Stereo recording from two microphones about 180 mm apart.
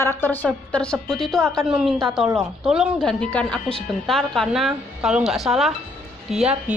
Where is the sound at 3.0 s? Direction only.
10° left (ahead or behind).